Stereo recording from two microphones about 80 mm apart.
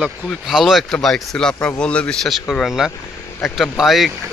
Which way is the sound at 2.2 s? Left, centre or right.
Centre.